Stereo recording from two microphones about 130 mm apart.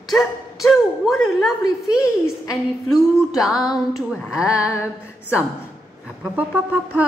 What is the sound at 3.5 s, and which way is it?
Female singing, 30° left (ahead or behind).